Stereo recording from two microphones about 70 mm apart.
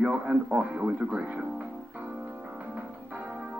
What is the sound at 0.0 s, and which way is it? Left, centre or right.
Speech, centre.